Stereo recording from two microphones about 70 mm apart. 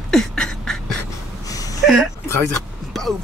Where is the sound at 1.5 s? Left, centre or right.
Left.